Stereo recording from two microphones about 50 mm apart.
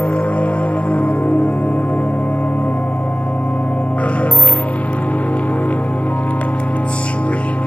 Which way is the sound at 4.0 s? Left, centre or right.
Left.